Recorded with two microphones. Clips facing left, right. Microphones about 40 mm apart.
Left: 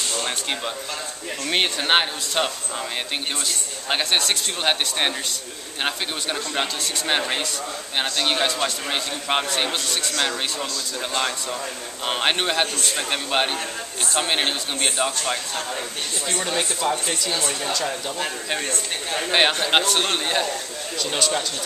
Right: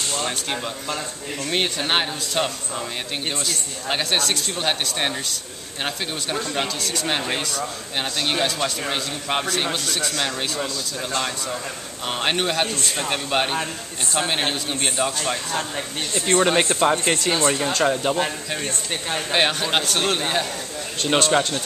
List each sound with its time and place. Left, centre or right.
1.8 s a man's voice: centre
4.6 s speech: centre
6.5 s a man's voice: centre
12.1 s a man's voice: centre
16.3 s speech: right
17.3 s speech: right
19.3 s a man's voice: centre
21.0 s speech: right